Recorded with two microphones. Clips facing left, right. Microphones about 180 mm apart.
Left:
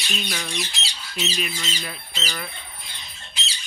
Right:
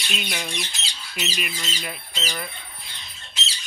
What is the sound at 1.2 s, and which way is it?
Squawk, 10° right (ahead or behind).